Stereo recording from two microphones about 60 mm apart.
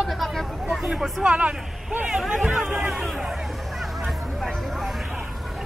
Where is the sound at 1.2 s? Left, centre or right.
Right.